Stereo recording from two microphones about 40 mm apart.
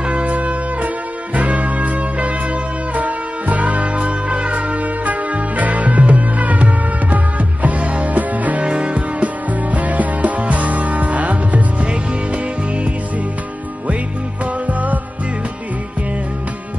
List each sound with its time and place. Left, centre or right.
0.0 s music: right
8.6 s music: right
8.9 s music: right